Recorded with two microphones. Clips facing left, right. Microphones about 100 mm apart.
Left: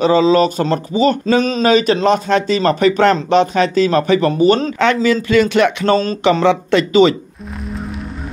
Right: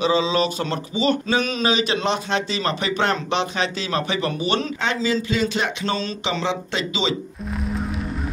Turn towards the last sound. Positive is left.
turn(degrees=55)  # may be behind; listen again after turning